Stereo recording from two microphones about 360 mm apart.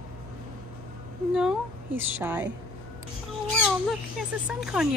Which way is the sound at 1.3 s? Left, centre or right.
Centre.